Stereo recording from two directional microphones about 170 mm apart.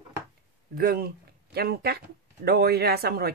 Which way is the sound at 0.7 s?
60° right (ahead or behind).